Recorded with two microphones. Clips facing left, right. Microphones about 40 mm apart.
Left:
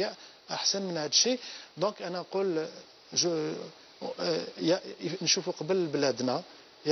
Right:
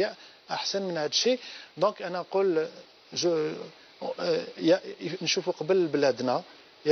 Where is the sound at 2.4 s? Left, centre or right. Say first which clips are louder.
Right 5 dB; centre.